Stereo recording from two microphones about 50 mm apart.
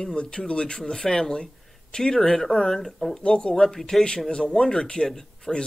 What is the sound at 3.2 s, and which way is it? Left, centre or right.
Speech, centre.